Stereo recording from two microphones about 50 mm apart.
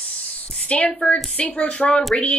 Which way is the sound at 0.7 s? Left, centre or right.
Left.